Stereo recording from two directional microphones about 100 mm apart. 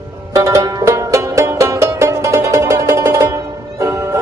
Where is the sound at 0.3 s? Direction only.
30° right (ahead or behind).